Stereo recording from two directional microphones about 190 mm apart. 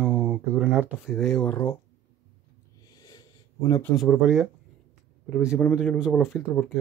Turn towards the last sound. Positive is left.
turn(degrees=0)  # may be behind; listen again after turning